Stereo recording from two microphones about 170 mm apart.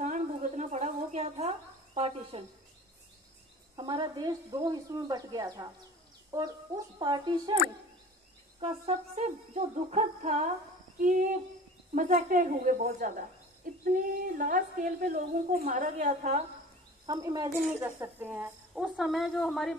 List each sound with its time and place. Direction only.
0.0 s a sound: 45° right (ahead or behind)
3.7 s a woman's voice: 25° right (ahead or behind)
8.5 s a woman's voice: 40° right (ahead or behind); by 15.8 s 60° right (ahead or behind)
15.8 s a woman's voice: 45° right (ahead or behind)
17.0 s speech: 25° right (ahead or behind)
17.7 s a woman's voice: 10° right (ahead or behind)